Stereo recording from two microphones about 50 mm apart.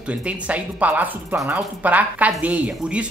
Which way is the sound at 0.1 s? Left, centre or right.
Right.